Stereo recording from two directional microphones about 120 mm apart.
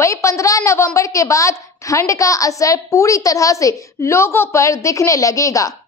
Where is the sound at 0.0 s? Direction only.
25° left (ahead or behind).